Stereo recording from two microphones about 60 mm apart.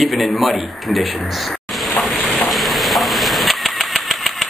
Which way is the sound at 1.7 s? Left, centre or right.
Centre.